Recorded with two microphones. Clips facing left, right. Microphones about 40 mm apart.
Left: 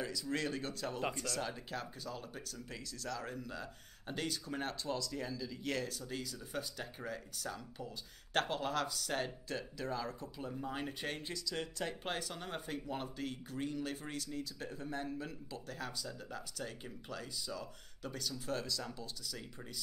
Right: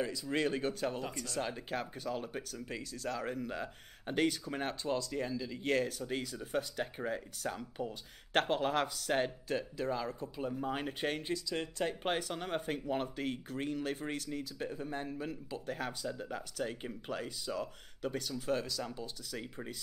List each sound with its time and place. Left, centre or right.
0.0 s speech: right
15.0 s a man's voice: centre
15.5 s speech: right